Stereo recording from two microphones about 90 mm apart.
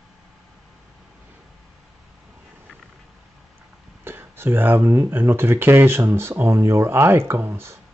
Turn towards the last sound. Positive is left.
turn(degrees=-25)  # may be behind; listen again after turning